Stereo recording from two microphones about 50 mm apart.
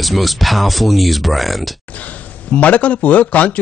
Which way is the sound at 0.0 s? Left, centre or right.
Centre.